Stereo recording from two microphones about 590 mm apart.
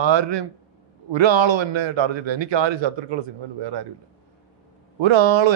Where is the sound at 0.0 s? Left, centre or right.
Right.